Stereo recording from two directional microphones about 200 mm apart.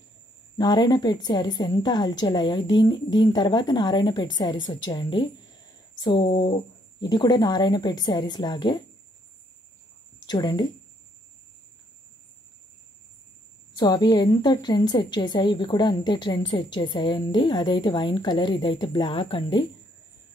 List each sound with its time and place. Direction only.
0.6 s a woman's voice: 20° left (ahead or behind)
10.2 s speech: 20° left (ahead or behind)
13.7 s a woman's voice: 20° left (ahead or behind)